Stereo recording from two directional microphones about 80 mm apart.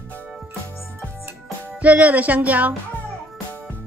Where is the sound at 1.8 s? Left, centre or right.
Centre.